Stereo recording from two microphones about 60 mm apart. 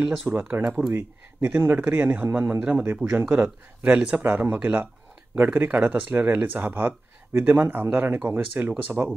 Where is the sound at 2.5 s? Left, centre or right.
Right.